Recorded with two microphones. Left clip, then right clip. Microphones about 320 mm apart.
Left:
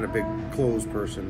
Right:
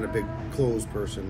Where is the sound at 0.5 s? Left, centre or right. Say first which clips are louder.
Left 1 dB; left.